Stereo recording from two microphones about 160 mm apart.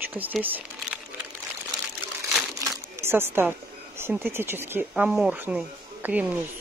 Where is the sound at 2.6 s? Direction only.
15° right (ahead or behind).